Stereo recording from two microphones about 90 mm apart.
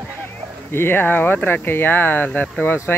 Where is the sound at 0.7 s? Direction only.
25° left (ahead or behind).